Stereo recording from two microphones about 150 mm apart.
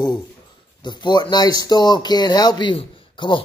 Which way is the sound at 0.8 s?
30° left (ahead or behind).